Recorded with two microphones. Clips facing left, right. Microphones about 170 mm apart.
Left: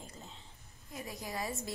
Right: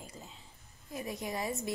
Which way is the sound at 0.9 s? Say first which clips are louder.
Right 4 dB; 20° right (ahead or behind).